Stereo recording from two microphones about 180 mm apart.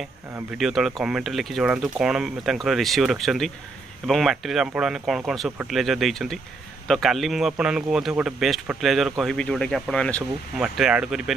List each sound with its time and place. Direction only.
0.5 s speech: centre (ahead or behind)